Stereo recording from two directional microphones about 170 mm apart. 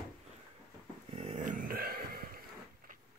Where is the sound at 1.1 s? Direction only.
40° right (ahead or behind); by 2.3 s 60° right (ahead or behind).